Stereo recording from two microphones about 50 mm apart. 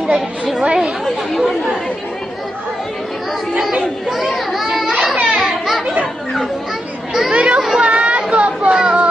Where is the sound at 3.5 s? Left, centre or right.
Centre.